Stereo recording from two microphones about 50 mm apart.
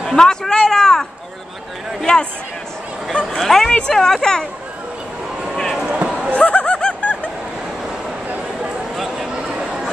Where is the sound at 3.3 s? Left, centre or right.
Centre.